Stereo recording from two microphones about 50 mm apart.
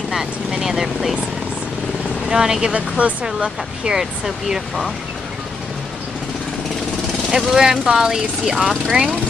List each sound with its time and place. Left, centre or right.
0.1 s speech: centre
2.2 s speech: centre
3.0 s speech: right
3.3 s speech: centre
7.2 s speech: centre